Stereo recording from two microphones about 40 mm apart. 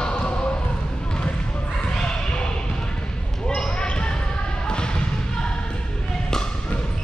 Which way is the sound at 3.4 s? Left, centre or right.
Left.